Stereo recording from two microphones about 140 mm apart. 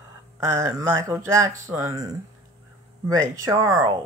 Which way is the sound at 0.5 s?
25° right (ahead or behind).